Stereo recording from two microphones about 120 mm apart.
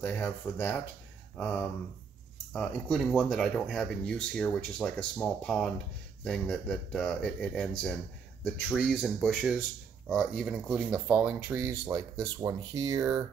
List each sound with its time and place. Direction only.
0.0 s speech: 15° left (ahead or behind)
8.7 s speech: 5° right (ahead or behind)
11.2 s speech: 15° right (ahead or behind)